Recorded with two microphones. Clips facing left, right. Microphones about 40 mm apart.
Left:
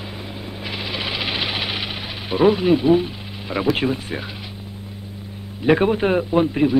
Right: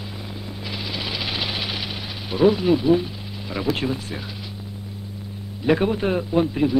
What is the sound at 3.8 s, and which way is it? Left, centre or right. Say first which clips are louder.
Speech: left 4 dB; left.